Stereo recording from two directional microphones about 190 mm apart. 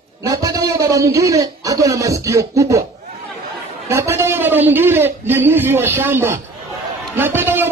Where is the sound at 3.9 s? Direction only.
15° right (ahead or behind).